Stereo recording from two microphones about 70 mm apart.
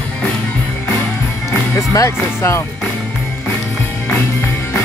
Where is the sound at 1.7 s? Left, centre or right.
Left.